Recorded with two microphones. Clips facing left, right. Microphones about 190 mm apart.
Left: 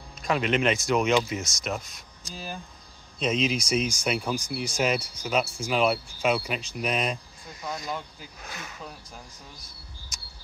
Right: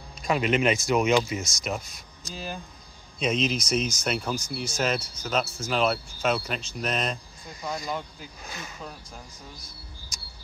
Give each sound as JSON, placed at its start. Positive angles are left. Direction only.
{"t": 0.1, "sound": "speech", "side_deg": 0}
{"t": 3.2, "sound": "speech", "side_deg": 5}
{"t": 10.1, "sound": "a sound", "side_deg": 0}